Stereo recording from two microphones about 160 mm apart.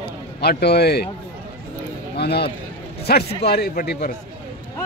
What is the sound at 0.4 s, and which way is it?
Speech, 85° left.